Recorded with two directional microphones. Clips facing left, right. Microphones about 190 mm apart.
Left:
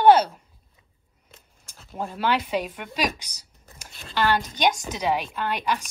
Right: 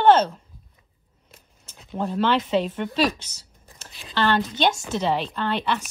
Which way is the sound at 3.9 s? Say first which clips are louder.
Even; centre (ahead or behind).